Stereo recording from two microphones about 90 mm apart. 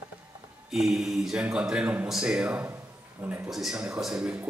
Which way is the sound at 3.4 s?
5° right (ahead or behind).